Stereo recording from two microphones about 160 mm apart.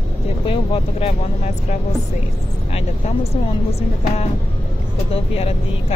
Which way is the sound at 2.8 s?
40° left (ahead or behind).